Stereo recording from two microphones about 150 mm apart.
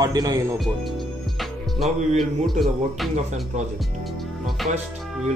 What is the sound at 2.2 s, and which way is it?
Speech, centre (ahead or behind).